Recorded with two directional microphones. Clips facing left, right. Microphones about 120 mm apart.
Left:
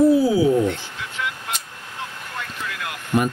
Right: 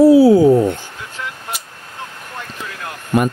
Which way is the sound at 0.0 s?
80° right.